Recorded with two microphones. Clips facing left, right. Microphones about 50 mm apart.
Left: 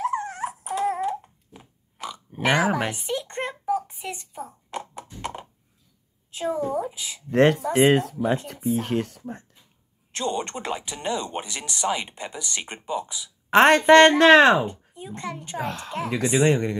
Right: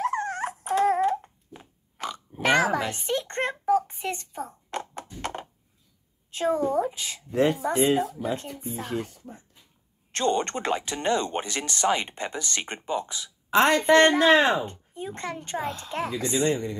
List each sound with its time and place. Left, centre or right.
0.0 s dog: centre
1.6 s a sound: centre
2.5 s speech: centre
2.9 s a sound: centre
6.3 s a woman's voice: centre
7.2 s speech: left
8.5 s speech: left
8.8 s speech: left
10.1 s speech: centre
13.5 s speech: left
15.1 s speech: centre
15.6 s speech: left
16.1 s speech: left